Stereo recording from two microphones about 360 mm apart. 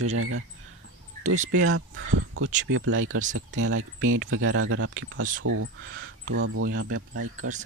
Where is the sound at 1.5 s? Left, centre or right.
Right.